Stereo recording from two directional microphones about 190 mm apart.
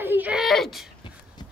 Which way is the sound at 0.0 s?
10° right (ahead or behind).